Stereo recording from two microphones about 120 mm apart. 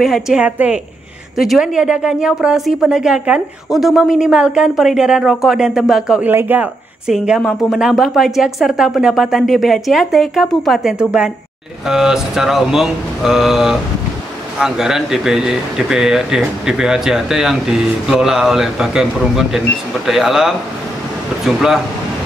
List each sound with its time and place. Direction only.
0.0 s a woman's voice: 5° right (ahead or behind)
7.1 s speech: 5° right (ahead or behind)